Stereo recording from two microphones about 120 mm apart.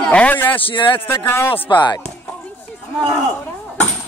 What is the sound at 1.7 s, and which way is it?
Speech, 40° left (ahead or behind).